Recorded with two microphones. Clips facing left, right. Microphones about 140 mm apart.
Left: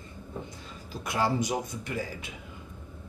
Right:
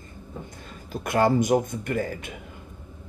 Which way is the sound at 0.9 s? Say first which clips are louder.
Right 7 dB; 55° right (ahead or behind).